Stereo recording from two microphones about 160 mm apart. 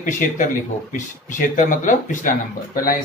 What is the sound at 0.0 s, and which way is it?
Speech, 60° left (ahead or behind).